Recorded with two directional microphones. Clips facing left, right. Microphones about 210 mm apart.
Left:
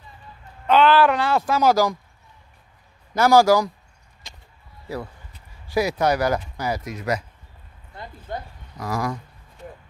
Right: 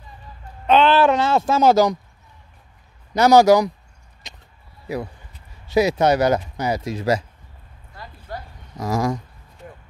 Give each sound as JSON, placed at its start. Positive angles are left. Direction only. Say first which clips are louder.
{"t": 0.7, "sound": "speech", "louder": "right 1 dB", "side_deg": -25}
{"t": 3.2, "sound": "speech", "louder": "right 3 dB", "side_deg": -20}
{"t": 4.2, "sound": "a sound", "louder": "right 3 dB", "side_deg": -20}
{"t": 5.7, "sound": "speech", "louder": "right 4 dB", "side_deg": -25}
{"t": 7.9, "sound": "a sound", "louder": "left 2 dB", "side_deg": 20}
{"t": 8.7, "sound": "speech", "louder": "right 4 dB", "side_deg": -25}